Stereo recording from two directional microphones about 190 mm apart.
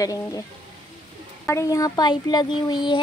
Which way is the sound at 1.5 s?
15° left (ahead or behind).